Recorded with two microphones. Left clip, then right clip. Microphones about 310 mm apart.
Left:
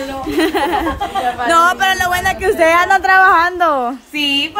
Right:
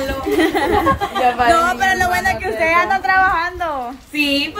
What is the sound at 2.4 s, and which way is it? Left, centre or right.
A woman's voice, centre.